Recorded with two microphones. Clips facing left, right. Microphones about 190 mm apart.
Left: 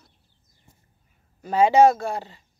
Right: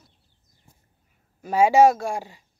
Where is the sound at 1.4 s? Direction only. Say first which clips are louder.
Even; 10° right (ahead or behind).